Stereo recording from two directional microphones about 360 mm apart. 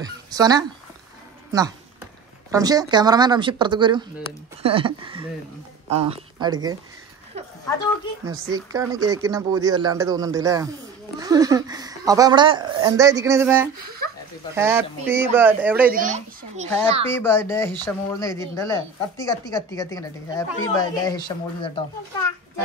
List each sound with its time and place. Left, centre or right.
0.0 s speech: centre
2.5 s speech: centre
8.3 s speech: centre
13.8 s a sound: right
14.5 s speech: centre
15.9 s a child's voice: right
17.1 s a woman's voice: centre